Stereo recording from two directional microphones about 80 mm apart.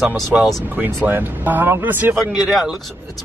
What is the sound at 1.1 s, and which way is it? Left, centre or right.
Speech, right.